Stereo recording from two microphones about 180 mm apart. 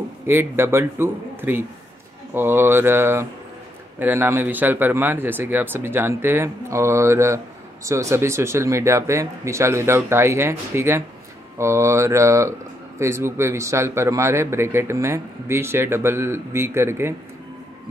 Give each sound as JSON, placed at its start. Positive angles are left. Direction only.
{"t": 0.3, "sound": "speech", "side_deg": -10}